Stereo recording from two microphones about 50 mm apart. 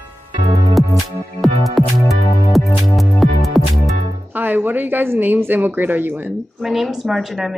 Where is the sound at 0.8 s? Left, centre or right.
Centre.